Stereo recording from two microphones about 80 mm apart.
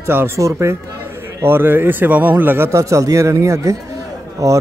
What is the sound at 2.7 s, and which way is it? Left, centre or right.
A man's voice, right.